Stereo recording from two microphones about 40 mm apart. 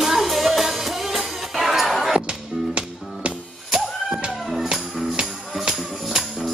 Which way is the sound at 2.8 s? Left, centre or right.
Right.